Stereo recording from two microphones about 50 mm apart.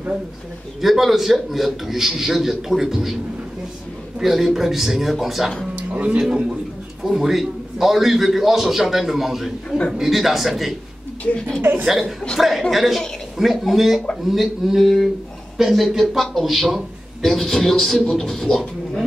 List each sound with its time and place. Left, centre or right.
0.7 s a man's voice: centre
4.2 s a man's voice: centre
5.8 s music: right
7.1 s a man's voice: centre
11.3 s speech: centre
12.4 s a man's voice: centre